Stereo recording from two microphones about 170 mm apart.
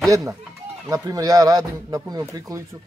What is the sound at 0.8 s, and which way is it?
A man's voice, 20° right (ahead or behind).